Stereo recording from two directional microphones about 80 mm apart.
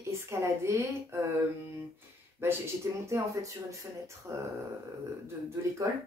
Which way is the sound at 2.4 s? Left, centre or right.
Right.